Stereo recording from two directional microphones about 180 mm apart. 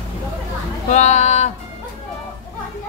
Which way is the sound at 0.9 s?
40° left (ahead or behind).